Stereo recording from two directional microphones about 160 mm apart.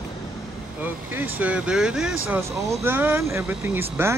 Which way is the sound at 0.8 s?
10° right (ahead or behind).